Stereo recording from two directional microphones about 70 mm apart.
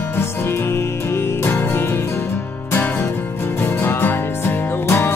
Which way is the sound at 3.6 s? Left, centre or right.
Left.